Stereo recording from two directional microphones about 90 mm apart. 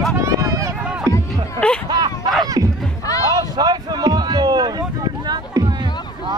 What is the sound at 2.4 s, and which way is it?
Music, 40° right (ahead or behind).